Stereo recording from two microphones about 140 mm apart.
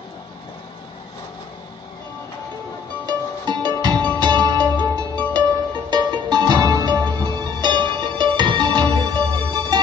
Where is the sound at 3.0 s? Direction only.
30° right (ahead or behind).